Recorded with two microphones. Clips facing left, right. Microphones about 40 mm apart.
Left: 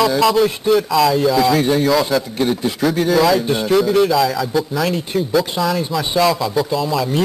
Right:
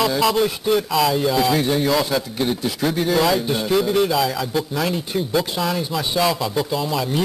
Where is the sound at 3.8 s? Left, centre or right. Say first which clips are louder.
Left 4 dB; centre.